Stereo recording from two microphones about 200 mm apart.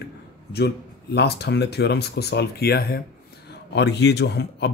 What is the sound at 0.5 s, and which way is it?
Speech, 55° left (ahead or behind).